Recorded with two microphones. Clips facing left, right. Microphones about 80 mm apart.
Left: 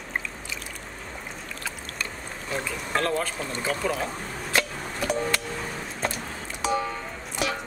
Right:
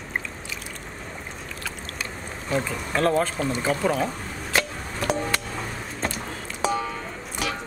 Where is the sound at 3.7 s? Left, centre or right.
Centre.